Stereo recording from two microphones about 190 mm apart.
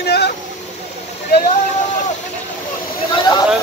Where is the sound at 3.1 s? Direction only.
20° left (ahead or behind).